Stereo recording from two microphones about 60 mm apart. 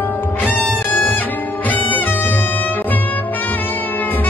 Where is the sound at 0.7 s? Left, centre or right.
Left.